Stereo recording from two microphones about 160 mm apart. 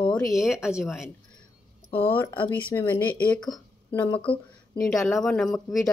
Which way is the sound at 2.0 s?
10° left (ahead or behind).